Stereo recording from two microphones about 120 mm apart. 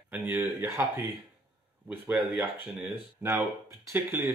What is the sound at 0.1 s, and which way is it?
Speech, 15° right (ahead or behind).